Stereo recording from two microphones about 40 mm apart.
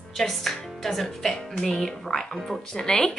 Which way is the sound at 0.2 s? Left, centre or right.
Centre.